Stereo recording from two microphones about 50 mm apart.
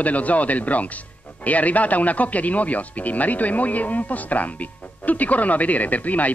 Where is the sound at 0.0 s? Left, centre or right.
Left.